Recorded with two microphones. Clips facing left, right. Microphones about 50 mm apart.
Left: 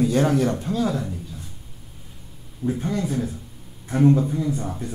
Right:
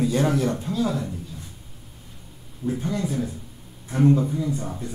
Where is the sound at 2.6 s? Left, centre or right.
Centre.